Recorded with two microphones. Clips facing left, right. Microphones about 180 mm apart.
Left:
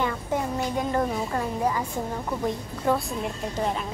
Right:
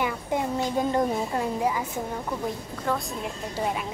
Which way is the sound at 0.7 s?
20° right (ahead or behind).